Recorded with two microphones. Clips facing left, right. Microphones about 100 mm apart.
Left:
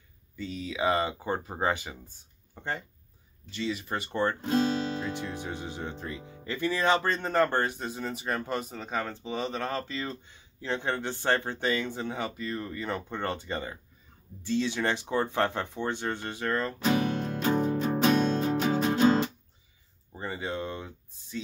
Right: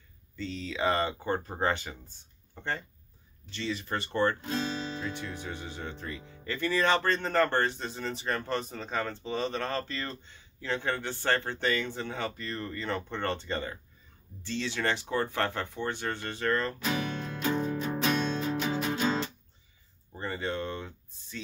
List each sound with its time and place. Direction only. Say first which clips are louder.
0.4 s speech: left 1 dB; 10° left (ahead or behind)
4.5 s music: left 6 dB; 50° left (ahead or behind)
5.0 s speech: left 3 dB; 20° left (ahead or behind)
16.8 s music: left 5 dB; 40° left (ahead or behind)
20.2 s speech: even; 10° left (ahead or behind)